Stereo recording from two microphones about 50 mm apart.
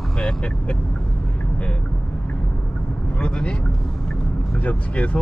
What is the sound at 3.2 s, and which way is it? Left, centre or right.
Vehicle, left.